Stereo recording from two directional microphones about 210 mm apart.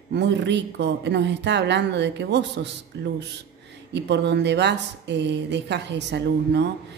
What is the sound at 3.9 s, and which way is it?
Speech, 55° right (ahead or behind).